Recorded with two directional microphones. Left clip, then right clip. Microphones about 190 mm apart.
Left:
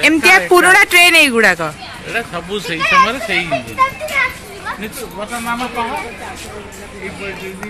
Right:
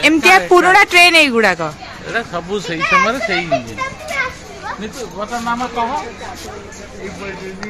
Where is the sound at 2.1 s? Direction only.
30° right (ahead or behind).